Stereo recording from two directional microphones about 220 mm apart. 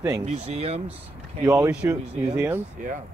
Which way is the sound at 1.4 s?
15° right (ahead or behind).